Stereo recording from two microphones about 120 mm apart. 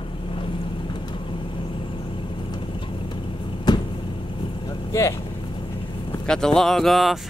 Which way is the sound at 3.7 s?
35° left (ahead or behind).